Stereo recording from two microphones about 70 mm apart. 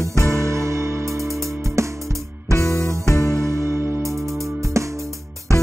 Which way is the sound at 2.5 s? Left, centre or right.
Left.